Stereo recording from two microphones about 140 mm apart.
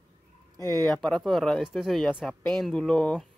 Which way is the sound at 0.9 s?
5° left (ahead or behind).